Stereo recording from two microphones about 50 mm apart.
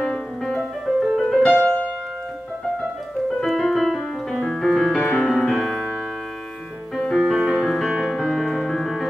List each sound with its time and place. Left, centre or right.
0.0 s music: centre
0.8 s music: centre
3.3 s piano: centre
5.0 s music: left
5.3 s music: centre
7.0 s music: centre
7.3 s music: centre